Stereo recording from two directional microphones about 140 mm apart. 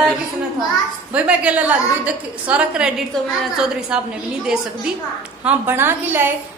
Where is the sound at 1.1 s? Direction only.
10° right (ahead or behind).